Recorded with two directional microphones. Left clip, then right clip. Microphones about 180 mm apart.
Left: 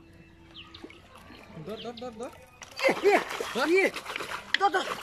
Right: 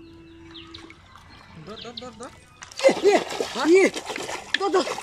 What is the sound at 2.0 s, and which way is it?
Speech, 10° left (ahead or behind).